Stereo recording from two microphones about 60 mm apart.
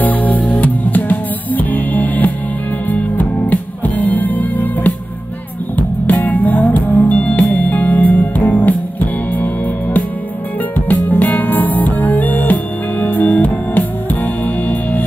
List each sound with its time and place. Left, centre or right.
0.0 s music: left
10.9 s music: left